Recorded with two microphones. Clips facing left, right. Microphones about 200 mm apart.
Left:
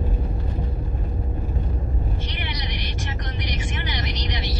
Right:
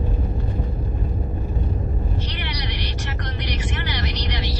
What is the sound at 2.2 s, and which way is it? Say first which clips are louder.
Vehicle: right 2 dB; 20° left (ahead or behind).